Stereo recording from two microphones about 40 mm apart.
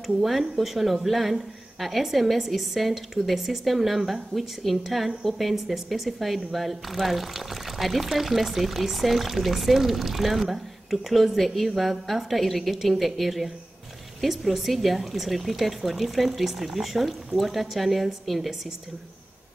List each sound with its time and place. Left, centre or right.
0.0 s speech: centre